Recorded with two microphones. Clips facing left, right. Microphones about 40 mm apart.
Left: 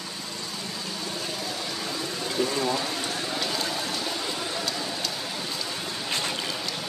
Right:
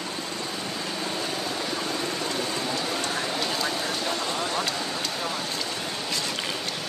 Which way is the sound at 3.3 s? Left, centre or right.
Right.